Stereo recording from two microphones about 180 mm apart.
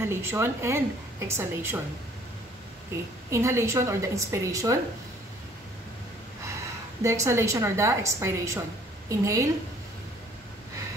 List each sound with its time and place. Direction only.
0.0 s a woman's voice: 15° right (ahead or behind)
3.3 s a woman's voice: 15° right (ahead or behind)
7.0 s a woman's voice: 15° right (ahead or behind)